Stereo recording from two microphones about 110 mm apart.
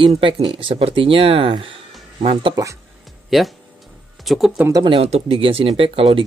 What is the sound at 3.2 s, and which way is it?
Speech, centre (ahead or behind).